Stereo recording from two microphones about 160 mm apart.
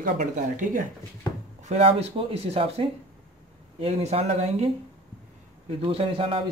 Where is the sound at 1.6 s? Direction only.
40° right (ahead or behind).